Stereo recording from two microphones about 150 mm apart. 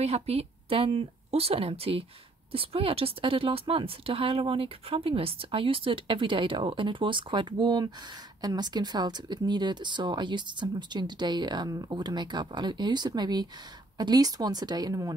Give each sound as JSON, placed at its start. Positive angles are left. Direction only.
{"t": 0.0, "sound": "a woman's voice", "side_deg": -45}